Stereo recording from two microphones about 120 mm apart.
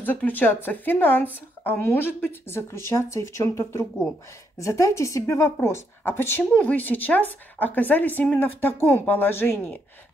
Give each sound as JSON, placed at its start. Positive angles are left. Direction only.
{"t": 0.0, "sound": "a woman's voice", "side_deg": 15}
{"t": 4.6, "sound": "a woman's voice", "side_deg": 25}